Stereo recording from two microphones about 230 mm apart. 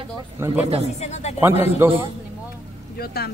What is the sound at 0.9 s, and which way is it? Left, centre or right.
Speech, left.